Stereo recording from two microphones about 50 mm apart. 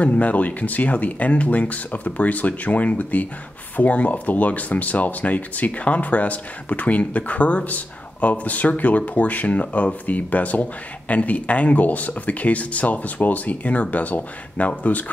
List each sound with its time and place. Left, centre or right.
0.0 s speech: left